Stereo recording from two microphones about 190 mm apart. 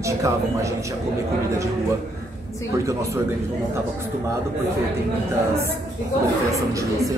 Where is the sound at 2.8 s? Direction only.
15° right (ahead or behind).